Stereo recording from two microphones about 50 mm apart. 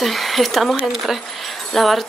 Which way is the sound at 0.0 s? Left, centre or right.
Centre.